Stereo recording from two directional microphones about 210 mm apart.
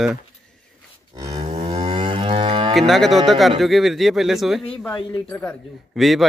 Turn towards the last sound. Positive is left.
turn(degrees=0)  # may be behind; listen again after turning